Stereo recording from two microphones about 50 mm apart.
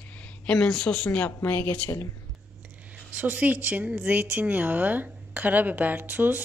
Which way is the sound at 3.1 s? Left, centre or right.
Right.